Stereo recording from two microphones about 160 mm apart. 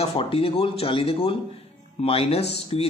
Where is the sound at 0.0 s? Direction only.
35° left (ahead or behind).